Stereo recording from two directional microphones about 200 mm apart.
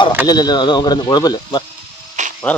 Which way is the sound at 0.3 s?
20° left (ahead or behind).